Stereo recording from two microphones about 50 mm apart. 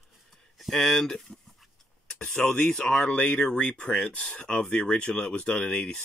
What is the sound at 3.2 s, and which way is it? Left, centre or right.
Speech, left.